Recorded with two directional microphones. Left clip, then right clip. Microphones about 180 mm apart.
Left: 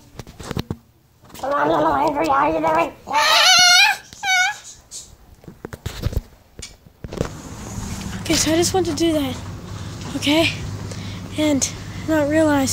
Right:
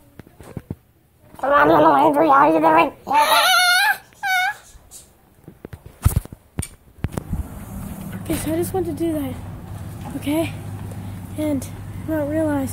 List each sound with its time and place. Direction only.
0.2 s a sound: 35° left (ahead or behind)
1.4 s a child's voice: 50° right (ahead or behind)
3.2 s dog: centre (ahead or behind); by 4.6 s 15° right (ahead or behind)
8.2 s a woman's voice: 5° left (ahead or behind)